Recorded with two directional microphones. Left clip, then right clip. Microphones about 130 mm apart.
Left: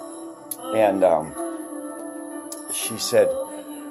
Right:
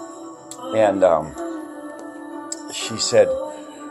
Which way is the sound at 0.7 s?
25° left (ahead or behind).